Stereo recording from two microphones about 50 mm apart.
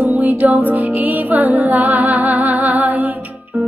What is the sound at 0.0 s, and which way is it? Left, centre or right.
Music, right.